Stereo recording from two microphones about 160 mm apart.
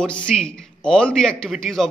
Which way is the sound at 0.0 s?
5° left (ahead or behind).